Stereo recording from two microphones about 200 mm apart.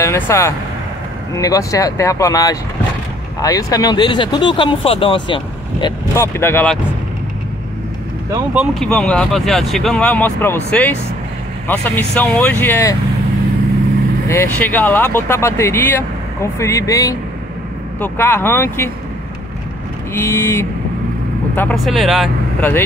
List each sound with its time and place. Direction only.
0.0 s speech: 15° left (ahead or behind)
6.2 s speech: 10° left (ahead or behind)
8.5 s speech: centre (ahead or behind)
14.2 s speech: 15° left (ahead or behind)
20.2 s speech: 10° left (ahead or behind)
22.6 s speech: 10° left (ahead or behind)